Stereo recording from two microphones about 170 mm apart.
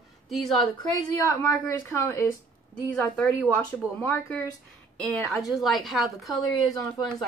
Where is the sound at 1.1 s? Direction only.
20° left (ahead or behind).